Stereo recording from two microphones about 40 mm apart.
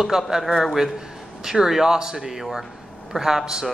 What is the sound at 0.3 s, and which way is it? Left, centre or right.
Speech, centre.